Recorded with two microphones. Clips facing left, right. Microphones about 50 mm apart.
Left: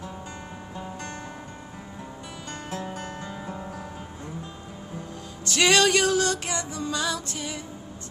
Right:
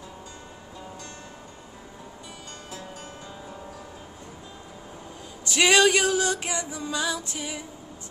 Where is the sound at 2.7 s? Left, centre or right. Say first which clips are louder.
Left 7 dB; left.